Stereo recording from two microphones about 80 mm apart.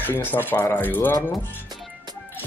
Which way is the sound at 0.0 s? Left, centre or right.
Left.